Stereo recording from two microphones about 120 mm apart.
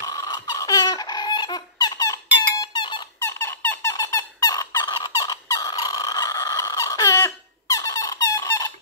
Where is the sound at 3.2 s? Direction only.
20° left (ahead or behind).